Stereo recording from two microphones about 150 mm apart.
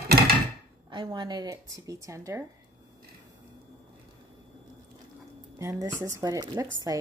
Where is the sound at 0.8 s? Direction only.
30° right (ahead or behind).